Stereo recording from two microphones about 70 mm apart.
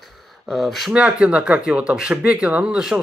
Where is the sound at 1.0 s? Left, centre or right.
Centre.